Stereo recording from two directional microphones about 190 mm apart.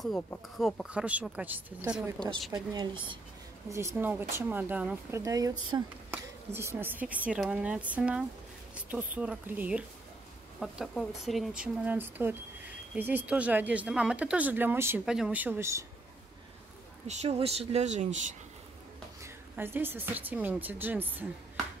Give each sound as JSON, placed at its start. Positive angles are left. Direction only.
{"t": 0.6, "sound": "speech", "side_deg": 0}
{"t": 2.5, "sound": "a woman's voice", "side_deg": -20}
{"t": 3.7, "sound": "speech", "side_deg": -10}
{"t": 17.1, "sound": "speech", "side_deg": -35}
{"t": 19.2, "sound": "speech", "side_deg": -10}